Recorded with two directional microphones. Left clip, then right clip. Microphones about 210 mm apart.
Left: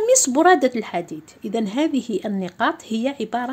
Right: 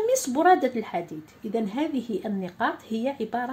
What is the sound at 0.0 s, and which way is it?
A woman's voice, 40° left (ahead or behind).